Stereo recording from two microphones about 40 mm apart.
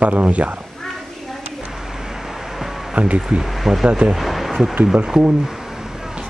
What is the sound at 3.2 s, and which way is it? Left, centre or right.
Speech, centre.